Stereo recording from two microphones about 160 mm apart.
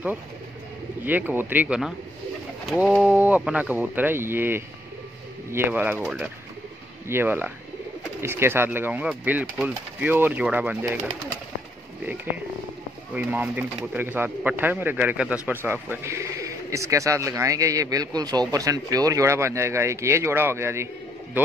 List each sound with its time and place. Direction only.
1.0 s speech: 10° right (ahead or behind)
13.1 s speech: 10° right (ahead or behind)